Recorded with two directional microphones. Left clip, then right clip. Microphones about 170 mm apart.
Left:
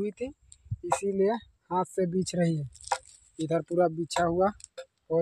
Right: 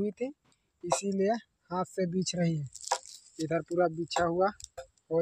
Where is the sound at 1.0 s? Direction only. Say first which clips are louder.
Left 3 dB; 40° left (ahead or behind).